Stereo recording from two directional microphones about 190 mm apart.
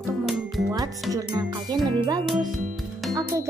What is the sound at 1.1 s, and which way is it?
Music, 20° right (ahead or behind).